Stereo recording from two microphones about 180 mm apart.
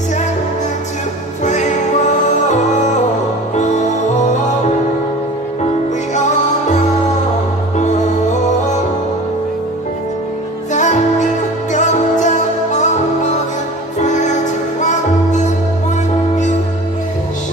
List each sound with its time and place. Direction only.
1.4 s music: 40° left (ahead or behind)
3.5 s music: 40° left (ahead or behind)
10.7 s music: 40° left (ahead or behind)
14.0 s music: 40° left (ahead or behind)